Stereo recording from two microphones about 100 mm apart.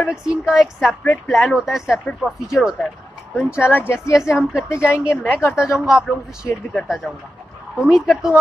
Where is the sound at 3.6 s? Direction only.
20° left (ahead or behind).